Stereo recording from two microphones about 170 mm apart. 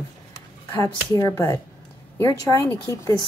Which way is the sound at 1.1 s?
20° left (ahead or behind).